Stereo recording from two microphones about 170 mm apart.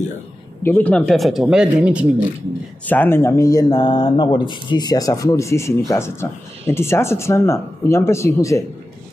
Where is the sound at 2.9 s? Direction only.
10° left (ahead or behind).